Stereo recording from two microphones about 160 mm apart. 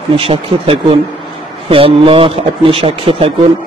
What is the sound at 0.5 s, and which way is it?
Speech, 35° right (ahead or behind).